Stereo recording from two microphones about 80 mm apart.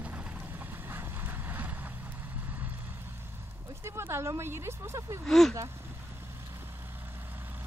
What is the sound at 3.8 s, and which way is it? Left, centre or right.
Speech, right.